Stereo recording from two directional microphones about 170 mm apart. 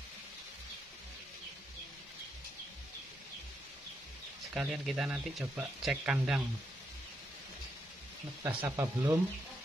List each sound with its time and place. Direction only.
4.6 s speech: 5° right (ahead or behind)
8.6 s speech: 15° right (ahead or behind)